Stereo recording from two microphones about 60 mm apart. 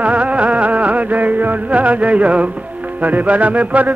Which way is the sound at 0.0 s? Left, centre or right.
Right.